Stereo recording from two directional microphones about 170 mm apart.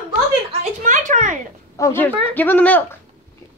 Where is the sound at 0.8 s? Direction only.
45° right (ahead or behind).